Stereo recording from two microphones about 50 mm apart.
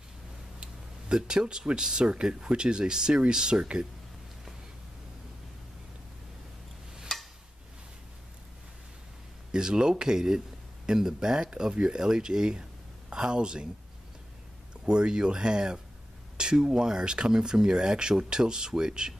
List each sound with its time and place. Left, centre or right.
0.6 s speech: centre
7.1 s a sound: centre
9.5 s speech: centre
14.9 s speech: centre